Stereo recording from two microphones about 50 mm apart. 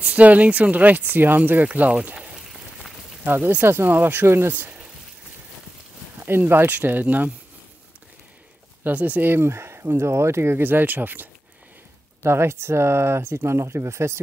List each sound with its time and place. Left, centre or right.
0.0 s speech: right
3.6 s speech: right
4.5 s speech: right
6.2 s speech: right
6.7 s speech: right
8.8 s speech: right
9.2 s speech: right
12.2 s speech: right